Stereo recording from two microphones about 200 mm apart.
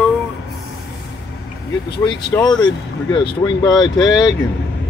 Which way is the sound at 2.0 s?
20° left (ahead or behind).